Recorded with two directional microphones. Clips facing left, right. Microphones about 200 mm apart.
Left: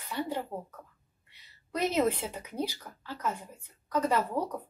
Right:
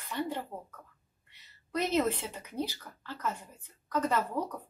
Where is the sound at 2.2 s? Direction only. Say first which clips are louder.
Left 2 dB; 10° left (ahead or behind).